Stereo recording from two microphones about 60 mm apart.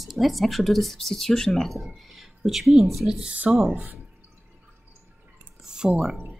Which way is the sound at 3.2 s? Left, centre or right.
Right.